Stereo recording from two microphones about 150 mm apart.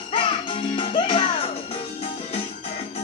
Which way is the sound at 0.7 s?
35° left (ahead or behind).